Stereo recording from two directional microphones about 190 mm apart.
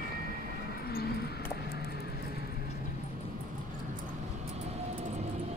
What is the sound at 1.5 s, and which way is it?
Music, 55° left (ahead or behind).